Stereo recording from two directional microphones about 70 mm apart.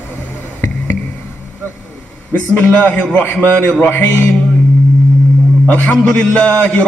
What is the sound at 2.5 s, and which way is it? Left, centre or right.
A man's voice, left.